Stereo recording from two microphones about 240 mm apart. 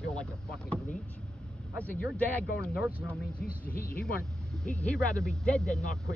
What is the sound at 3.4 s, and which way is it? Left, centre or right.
Speech, left.